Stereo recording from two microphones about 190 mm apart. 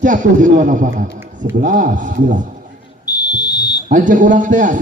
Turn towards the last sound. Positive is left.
turn(degrees=-45)  # may be behind; listen again after turning